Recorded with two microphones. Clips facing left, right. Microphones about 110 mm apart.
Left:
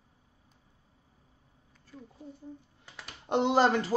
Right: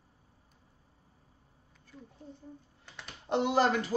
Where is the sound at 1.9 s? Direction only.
10° left (ahead or behind).